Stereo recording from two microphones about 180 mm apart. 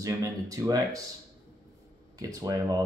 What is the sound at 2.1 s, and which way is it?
Speech, 20° right (ahead or behind).